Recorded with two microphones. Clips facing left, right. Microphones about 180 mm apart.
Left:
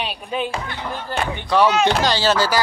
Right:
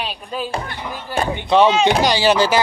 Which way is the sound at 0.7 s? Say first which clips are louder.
Right 1 dB; 10° right (ahead or behind).